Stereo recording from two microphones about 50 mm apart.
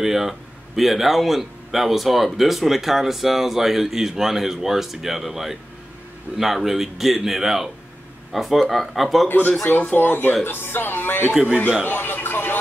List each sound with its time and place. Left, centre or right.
0.0 s a man's voice: centre
9.9 s speech: left